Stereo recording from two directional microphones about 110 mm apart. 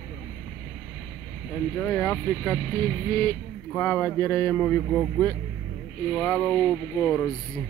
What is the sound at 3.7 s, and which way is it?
Speech, 15° left (ahead or behind).